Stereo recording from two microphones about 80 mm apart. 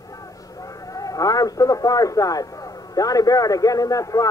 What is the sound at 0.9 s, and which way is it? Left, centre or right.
A man's voice, left.